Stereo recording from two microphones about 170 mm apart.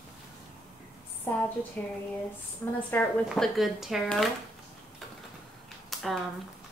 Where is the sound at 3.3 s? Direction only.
Centre (ahead or behind).